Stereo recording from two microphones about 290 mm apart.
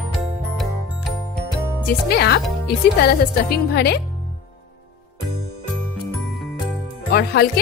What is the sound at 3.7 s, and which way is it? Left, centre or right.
Speech, left.